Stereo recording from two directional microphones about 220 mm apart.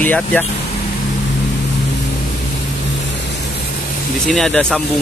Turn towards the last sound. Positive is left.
turn(degrees=0)  # may be behind; listen again after turning